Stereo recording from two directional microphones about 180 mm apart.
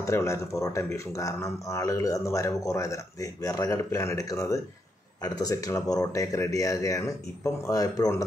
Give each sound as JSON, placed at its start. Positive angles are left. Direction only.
{"t": 0.0, "sound": "speech", "side_deg": 15}